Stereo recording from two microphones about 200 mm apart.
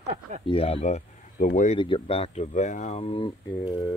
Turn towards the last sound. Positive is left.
turn(degrees=25)  # may be behind; listen again after turning